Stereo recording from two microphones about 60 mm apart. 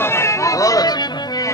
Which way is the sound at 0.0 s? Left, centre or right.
Left.